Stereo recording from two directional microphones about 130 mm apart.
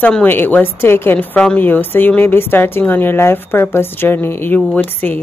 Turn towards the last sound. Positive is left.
turn(degrees=15)  # may be behind; listen again after turning